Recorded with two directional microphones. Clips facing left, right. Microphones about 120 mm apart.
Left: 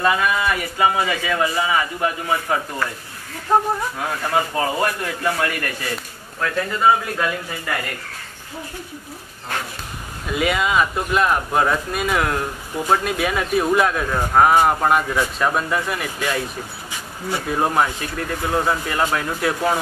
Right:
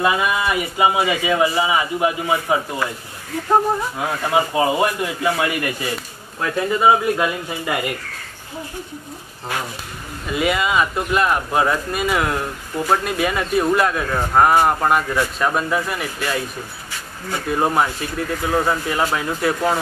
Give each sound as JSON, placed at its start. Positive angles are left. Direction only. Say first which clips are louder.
{"t": 0.0, "sound": "a man's voice", "louder": "even", "side_deg": -10}
{"t": 4.0, "sound": "a man's voice", "louder": "right 3 dB", "side_deg": -15}
{"t": 10.2, "sound": "speech", "louder": "right 1 dB", "side_deg": 0}
{"t": 17.3, "sound": "speech", "louder": "right 1 dB", "side_deg": 0}